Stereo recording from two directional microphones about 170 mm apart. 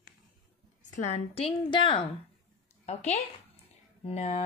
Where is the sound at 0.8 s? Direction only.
45° left (ahead or behind).